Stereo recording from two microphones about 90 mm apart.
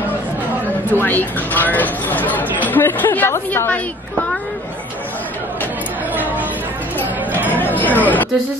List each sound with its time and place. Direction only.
0.9 s speech: 20° left (ahead or behind)
6.1 s chatter: 20° right (ahead or behind)
7.5 s music: 20° left (ahead or behind)